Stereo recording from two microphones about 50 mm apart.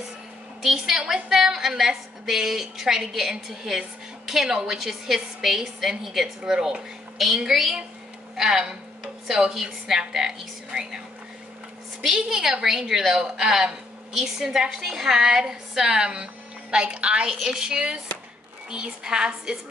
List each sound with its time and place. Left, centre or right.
0.6 s a woman's voice: centre
12.0 s a woman's voice: centre
17.4 s a woman's voice: centre